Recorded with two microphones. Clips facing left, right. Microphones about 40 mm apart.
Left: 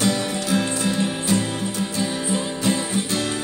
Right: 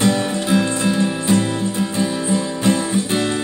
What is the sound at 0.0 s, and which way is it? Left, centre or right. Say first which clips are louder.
Music: right 4 dB; right.